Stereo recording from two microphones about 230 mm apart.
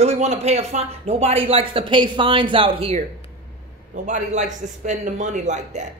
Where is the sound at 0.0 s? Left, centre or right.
Right.